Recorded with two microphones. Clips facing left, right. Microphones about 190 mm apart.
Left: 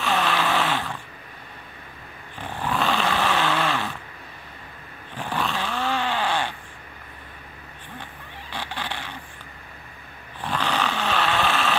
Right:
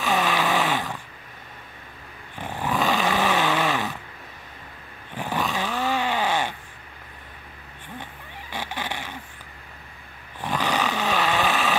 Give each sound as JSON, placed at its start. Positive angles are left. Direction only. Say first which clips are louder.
{"t": 0.1, "sound": "vehicle", "louder": "right 1 dB", "side_deg": -15}
{"t": 2.3, "sound": "snoring", "louder": "right 1 dB", "side_deg": -10}
{"t": 5.1, "sound": "dog", "louder": "right 1 dB", "side_deg": -15}
{"t": 8.5, "sound": "honk", "louder": "right 1 dB", "side_deg": -15}
{"t": 10.4, "sound": "roar", "louder": "right 1 dB", "side_deg": -10}